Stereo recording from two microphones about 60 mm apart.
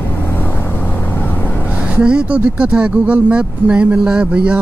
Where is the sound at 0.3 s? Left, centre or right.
Left.